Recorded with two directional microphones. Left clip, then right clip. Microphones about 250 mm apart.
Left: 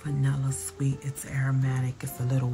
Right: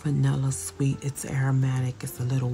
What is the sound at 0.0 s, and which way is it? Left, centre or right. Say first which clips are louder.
Speech: right 4 dB; centre.